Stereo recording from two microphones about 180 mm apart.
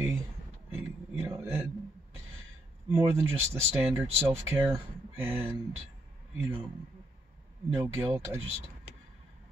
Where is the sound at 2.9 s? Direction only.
10° right (ahead or behind).